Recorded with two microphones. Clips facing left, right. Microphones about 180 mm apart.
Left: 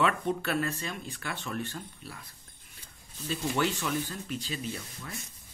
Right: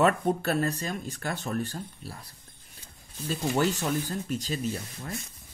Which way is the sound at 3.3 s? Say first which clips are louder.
Right 3 dB; 40° right (ahead or behind).